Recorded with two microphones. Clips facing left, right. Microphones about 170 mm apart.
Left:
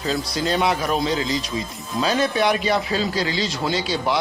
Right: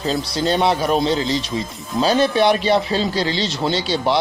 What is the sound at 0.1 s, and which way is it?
Speech, 30° right (ahead or behind).